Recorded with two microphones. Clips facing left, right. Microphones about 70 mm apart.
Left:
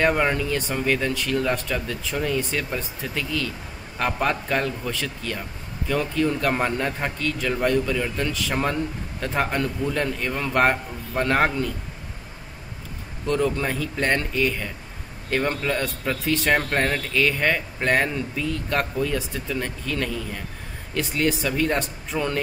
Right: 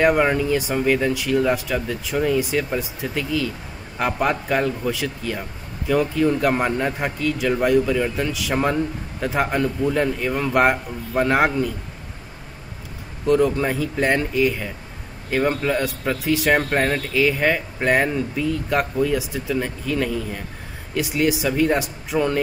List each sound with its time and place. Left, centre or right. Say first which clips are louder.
0.0 s speech: right 4 dB; centre
13.3 s speech: right 5 dB; centre